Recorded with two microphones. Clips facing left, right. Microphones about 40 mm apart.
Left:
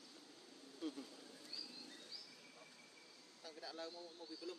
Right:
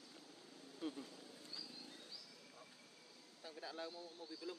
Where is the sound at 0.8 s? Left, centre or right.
Centre.